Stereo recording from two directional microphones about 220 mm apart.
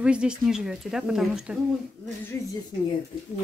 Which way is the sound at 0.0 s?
5° right (ahead or behind).